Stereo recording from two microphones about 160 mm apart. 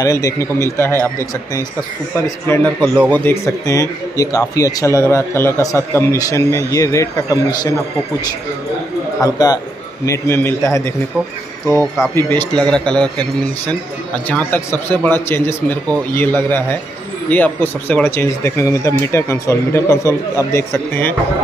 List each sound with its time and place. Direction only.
0.0 s speech: 20° left (ahead or behind)
9.2 s a man's voice: 25° left (ahead or behind); by 13.1 s 5° left (ahead or behind)
14.2 s speech: 10° left (ahead or behind)